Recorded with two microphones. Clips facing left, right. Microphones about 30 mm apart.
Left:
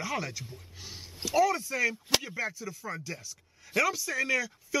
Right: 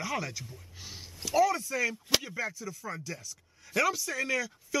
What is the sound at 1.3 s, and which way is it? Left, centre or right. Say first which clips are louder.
Speech: even; centre.